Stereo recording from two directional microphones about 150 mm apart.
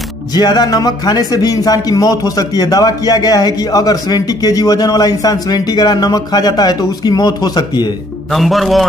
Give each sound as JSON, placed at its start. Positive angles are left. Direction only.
{"t": 0.3, "sound": "a man's voice", "side_deg": 25}
{"t": 8.3, "sound": "a man's voice", "side_deg": 0}